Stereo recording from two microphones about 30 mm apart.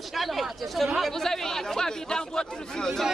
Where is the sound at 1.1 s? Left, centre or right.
Centre.